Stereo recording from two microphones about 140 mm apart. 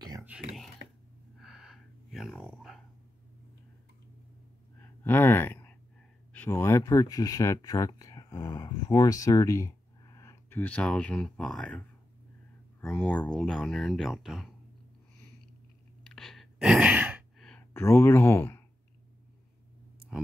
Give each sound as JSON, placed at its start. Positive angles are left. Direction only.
{"t": 1.4, "sound": "gasp", "side_deg": 0}
{"t": 5.0, "sound": "speech", "side_deg": 15}
{"t": 12.8, "sound": "speech", "side_deg": 10}
{"t": 16.1, "sound": "sigh", "side_deg": 0}
{"t": 17.5, "sound": "speech", "side_deg": 15}
{"t": 20.1, "sound": "speech", "side_deg": -5}